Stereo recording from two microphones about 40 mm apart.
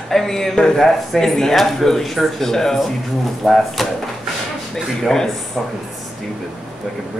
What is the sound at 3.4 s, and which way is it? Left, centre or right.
Speech, centre.